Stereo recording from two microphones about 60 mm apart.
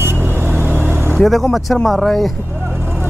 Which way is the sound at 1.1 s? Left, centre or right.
Centre.